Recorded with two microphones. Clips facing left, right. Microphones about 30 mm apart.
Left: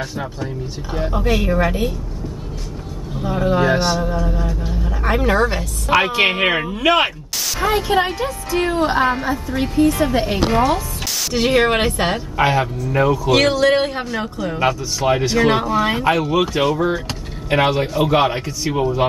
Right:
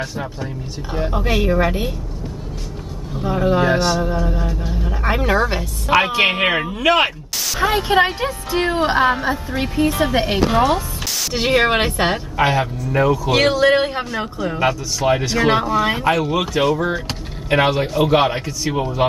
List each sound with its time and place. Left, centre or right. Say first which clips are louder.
0.0 s a woman's voice: even; centre
3.3 s speech: even; centre
3.7 s speech: even; centre
4.2 s speech: even; centre
7.6 s speech: right 2 dB; centre
8.6 s a woman's voice: right 1 dB; centre
11.3 s a woman's voice: even; centre
12.4 s speech: left 2 dB; centre